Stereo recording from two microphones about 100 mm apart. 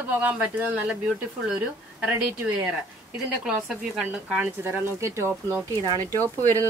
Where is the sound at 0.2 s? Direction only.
15° right (ahead or behind).